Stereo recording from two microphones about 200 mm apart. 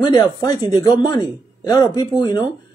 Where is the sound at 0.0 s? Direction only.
20° left (ahead or behind).